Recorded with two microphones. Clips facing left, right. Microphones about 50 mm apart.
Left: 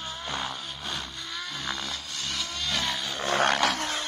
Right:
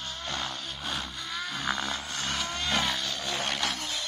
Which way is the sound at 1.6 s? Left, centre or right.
Centre.